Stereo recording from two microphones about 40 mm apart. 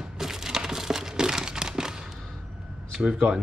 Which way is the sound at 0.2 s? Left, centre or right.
Centre.